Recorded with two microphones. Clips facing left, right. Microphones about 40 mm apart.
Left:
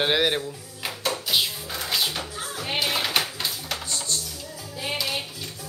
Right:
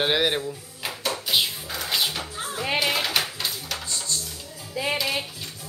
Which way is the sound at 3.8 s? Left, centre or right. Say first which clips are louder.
Left 1 dB; left.